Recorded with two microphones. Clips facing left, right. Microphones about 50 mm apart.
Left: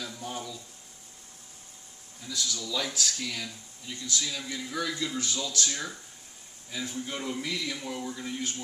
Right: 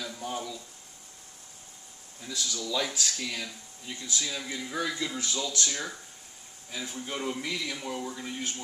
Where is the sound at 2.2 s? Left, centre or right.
Centre.